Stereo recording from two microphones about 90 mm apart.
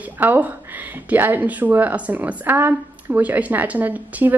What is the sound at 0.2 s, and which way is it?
A woman's voice, 20° right (ahead or behind).